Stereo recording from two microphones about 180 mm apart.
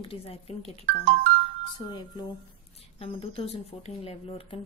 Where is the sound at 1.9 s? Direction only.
25° left (ahead or behind).